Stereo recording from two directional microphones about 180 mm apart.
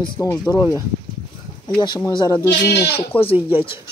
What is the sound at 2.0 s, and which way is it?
Speech, 20° left (ahead or behind).